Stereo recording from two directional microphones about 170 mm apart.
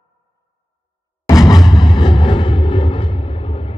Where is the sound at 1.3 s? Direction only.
20° left (ahead or behind).